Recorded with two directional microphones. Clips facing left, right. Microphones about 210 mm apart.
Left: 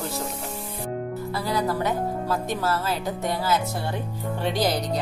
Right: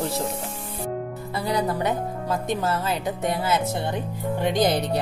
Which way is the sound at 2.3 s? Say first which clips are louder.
Right 3 dB; 20° right (ahead or behind).